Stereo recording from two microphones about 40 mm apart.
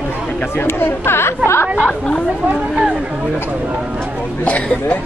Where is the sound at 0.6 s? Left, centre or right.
Left.